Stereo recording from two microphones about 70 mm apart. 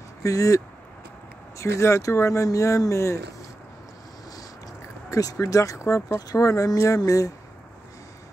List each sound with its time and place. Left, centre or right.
0.2 s speech: left
1.6 s speech: left
5.1 s speech: left